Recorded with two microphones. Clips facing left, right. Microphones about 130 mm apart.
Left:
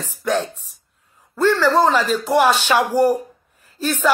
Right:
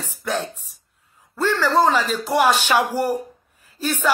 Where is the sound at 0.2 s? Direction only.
Centre (ahead or behind).